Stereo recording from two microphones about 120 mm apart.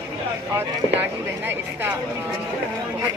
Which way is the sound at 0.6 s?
15° right (ahead or behind).